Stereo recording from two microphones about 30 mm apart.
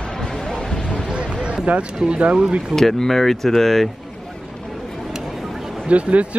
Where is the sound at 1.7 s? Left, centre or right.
Right.